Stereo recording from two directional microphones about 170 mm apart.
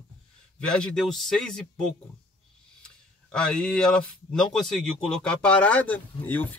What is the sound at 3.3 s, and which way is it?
A man's voice, 5° left (ahead or behind).